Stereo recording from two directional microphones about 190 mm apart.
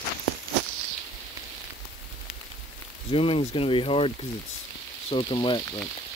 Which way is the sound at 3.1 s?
30° left (ahead or behind).